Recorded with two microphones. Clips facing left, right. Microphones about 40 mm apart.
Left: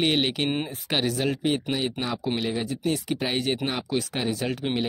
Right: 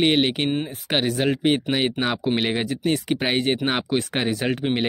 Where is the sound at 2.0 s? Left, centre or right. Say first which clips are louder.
Right 5 dB; right.